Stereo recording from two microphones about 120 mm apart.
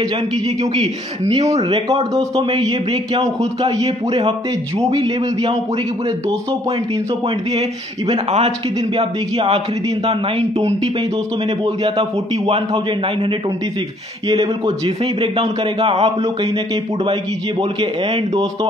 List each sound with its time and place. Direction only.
1.3 s a man's voice: 60° right (ahead or behind)
8.1 s a man's voice: 60° right (ahead or behind)
8.9 s a man's voice: 50° right (ahead or behind)
11.6 s a man's voice: 50° right (ahead or behind)
15.3 s a man's voice: 55° right (ahead or behind)
18.3 s speech: 30° right (ahead or behind)